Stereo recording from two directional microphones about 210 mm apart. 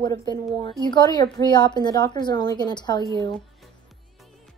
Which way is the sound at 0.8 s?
20° left (ahead or behind).